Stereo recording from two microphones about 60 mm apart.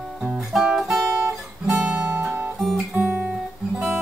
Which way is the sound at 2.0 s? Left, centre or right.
Right.